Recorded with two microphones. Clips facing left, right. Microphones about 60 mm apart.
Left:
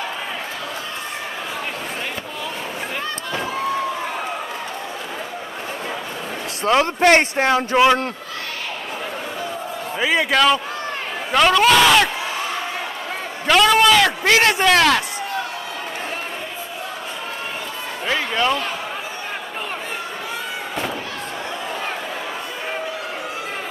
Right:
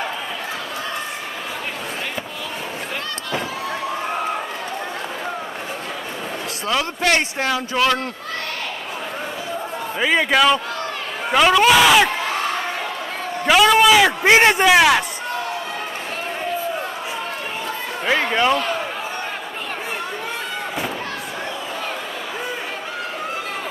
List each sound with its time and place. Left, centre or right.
6.6 s speech: left
9.9 s speech: centre
13.5 s a man's voice: centre
18.0 s speech: centre